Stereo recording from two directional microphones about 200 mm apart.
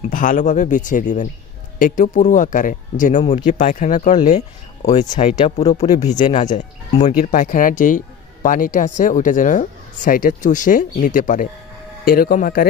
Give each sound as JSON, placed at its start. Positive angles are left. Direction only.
{"t": 0.1, "sound": "speech", "side_deg": 40}
{"t": 5.3, "sound": "speech", "side_deg": 20}